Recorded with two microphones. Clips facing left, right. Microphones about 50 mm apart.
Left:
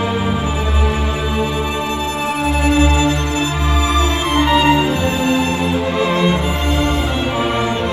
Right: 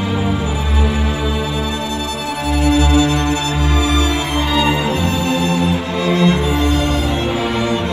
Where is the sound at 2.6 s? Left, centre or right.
Left.